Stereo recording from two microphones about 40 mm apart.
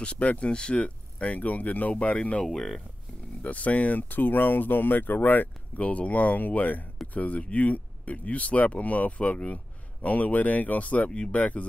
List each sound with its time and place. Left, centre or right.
0.0 s speech: left
2.4 s speech: centre
3.4 s speech: left
4.1 s speech: left